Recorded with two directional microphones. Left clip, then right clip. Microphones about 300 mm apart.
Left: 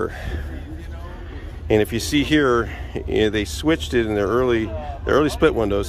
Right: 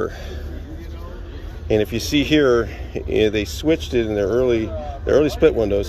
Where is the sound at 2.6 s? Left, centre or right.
Left.